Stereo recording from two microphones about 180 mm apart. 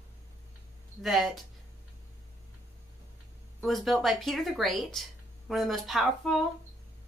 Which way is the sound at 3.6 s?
Centre (ahead or behind).